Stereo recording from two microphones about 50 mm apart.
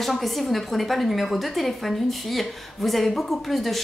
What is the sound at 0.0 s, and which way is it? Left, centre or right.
A woman's voice, centre.